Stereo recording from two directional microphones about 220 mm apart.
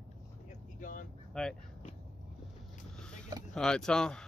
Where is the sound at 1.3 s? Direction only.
5° left (ahead or behind).